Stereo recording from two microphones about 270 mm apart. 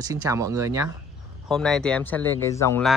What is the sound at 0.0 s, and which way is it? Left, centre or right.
Speech, centre.